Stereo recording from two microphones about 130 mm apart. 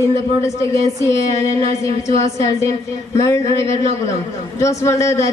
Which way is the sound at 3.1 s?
25° left (ahead or behind).